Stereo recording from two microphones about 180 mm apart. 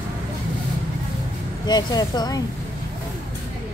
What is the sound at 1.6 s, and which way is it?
Speech, 20° left (ahead or behind).